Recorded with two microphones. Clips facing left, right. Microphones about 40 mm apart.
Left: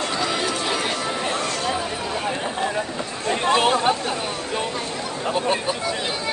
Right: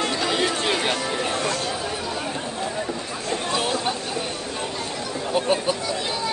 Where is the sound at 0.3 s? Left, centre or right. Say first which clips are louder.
Right 1 dB; right.